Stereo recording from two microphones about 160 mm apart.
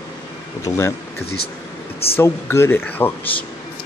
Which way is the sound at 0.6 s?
20° left (ahead or behind).